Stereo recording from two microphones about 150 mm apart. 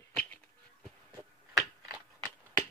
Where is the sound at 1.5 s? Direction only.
25° right (ahead or behind).